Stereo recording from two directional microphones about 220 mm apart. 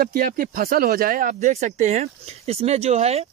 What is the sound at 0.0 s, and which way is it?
Speech, 40° right (ahead or behind).